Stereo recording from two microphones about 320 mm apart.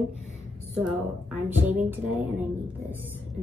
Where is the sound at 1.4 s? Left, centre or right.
Centre.